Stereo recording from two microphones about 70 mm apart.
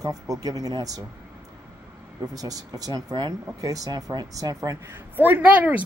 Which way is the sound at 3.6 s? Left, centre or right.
Right.